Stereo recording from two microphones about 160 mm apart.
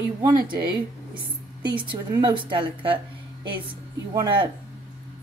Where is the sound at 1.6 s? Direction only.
30° right (ahead or behind).